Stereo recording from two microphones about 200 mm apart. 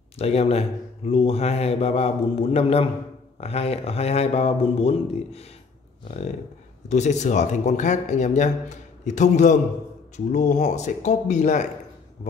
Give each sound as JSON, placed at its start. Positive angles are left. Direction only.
{"t": 0.2, "sound": "speech", "side_deg": 30}
{"t": 6.9, "sound": "speech", "side_deg": 35}